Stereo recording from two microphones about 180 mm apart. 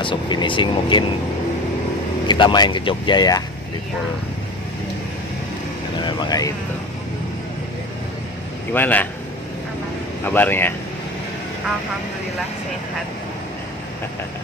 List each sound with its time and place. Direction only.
0.0 s speech: 25° left (ahead or behind)
2.2 s speech: 25° left (ahead or behind)
5.9 s speech: 25° left (ahead or behind)
8.7 s a man's voice: 10° left (ahead or behind)
10.2 s a man's voice: 10° left (ahead or behind)